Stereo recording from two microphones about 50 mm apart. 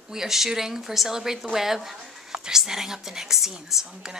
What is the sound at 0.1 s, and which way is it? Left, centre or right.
Speech, centre.